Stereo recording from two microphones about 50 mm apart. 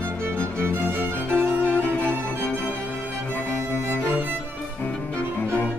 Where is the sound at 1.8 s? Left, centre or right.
Left.